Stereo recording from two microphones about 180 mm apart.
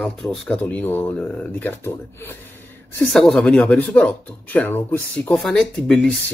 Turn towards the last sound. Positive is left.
turn(degrees=5)  # may be behind; listen again after turning